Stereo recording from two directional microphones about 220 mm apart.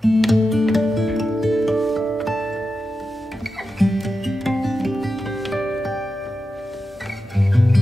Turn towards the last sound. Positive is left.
turn(degrees=0)  # may be behind; listen again after turning